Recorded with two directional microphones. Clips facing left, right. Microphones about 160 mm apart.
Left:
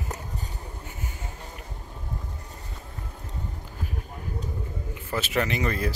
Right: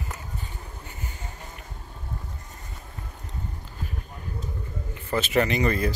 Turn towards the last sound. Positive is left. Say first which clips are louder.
# right 3 dB
turn(degrees=0)  # may be behind; listen again after turning